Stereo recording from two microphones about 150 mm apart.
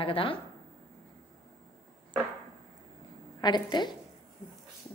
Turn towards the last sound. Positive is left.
turn(degrees=30)  # may be behind; listen again after turning